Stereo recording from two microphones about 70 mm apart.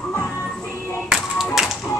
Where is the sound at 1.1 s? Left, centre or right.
Centre.